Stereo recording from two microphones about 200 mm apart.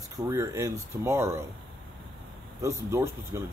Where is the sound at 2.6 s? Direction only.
15° right (ahead or behind).